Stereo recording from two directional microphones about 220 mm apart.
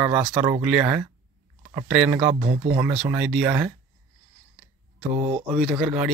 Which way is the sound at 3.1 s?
Centre (ahead or behind).